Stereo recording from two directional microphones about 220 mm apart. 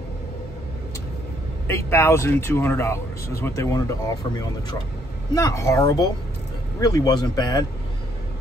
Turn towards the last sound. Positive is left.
turn(degrees=20)  # may be behind; listen again after turning